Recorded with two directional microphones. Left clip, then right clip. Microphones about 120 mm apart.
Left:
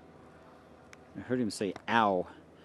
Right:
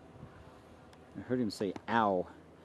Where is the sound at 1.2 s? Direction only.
10° left (ahead or behind).